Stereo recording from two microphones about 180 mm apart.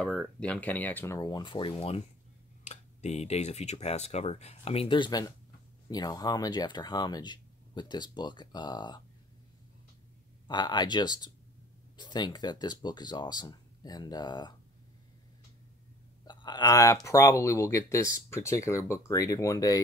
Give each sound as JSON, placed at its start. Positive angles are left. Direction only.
{"t": 0.0, "sound": "speech", "side_deg": 5}
{"t": 10.5, "sound": "speech", "side_deg": 25}
{"t": 16.3, "sound": "speech", "side_deg": 25}